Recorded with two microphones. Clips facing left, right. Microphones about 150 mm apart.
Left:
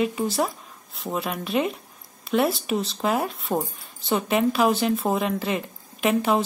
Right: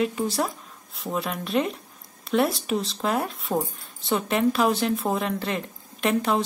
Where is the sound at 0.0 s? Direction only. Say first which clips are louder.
Left 1 dB; centre (ahead or behind).